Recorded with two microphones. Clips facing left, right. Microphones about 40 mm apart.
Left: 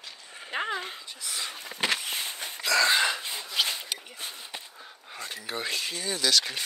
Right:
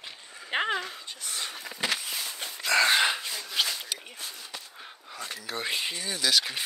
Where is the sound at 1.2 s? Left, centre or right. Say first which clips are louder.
Left 1 dB; right.